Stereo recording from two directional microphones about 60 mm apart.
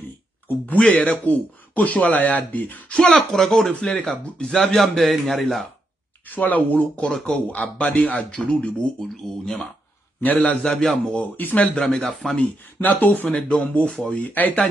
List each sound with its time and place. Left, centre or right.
0.5 s speech: left
3.0 s a man's voice: centre
3.7 s speech: centre
4.6 s a man's voice: centre
6.2 s speech: left
7.0 s speech: centre
7.4 s speech: left
9.0 s speech: centre
10.2 s speech: left
10.5 s speech: centre
11.1 s speech: left
11.8 s speech: centre
12.8 s speech: left